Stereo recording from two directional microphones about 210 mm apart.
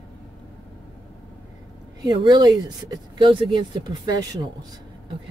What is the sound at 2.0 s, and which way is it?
Speech, 20° right (ahead or behind).